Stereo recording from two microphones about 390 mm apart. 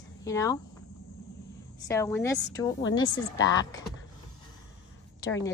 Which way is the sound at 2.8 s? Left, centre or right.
Left.